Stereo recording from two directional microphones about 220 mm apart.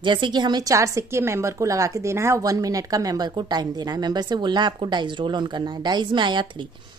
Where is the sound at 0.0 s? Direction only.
20° right (ahead or behind).